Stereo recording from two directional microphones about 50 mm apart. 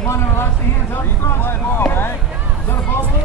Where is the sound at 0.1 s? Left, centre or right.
Left.